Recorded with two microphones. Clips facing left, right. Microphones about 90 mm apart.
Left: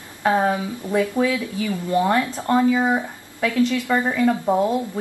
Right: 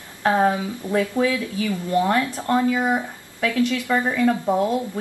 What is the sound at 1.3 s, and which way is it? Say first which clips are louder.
A woman's voice: even; 20° left (ahead or behind).